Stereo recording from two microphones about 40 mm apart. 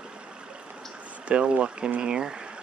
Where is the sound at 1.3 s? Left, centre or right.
Right.